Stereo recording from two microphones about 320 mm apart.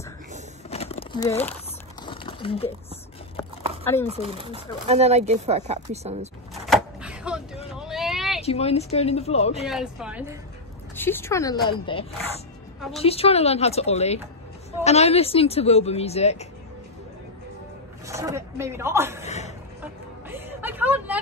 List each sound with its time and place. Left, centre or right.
0.7 s crumpling: centre
4.1 s speech: centre
6.5 s vehicle: centre
7.8 s a sound: centre
8.4 s a woman's voice: centre
9.7 s speech: centre
11.0 s a woman's voice: centre
18.0 s a woman's voice: centre
19.2 s a sound: left
19.8 s vehicle: centre